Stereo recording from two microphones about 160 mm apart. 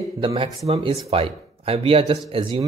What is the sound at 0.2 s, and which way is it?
Speech, 35° right (ahead or behind).